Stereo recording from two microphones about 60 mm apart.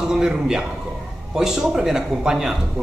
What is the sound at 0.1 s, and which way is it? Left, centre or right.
A man's voice, centre.